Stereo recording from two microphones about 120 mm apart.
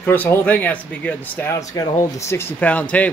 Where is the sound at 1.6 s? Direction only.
25° left (ahead or behind).